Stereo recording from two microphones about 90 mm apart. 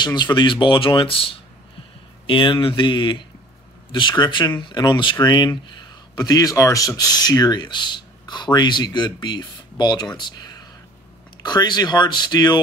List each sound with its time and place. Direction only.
0.0 s speech: 55° left (ahead or behind); by 1.4 s 85° left
2.2 s speech: 70° left (ahead or behind); by 12.5 s 50° left (ahead or behind)